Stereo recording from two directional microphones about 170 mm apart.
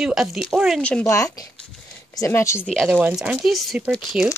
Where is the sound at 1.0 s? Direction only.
20° left (ahead or behind).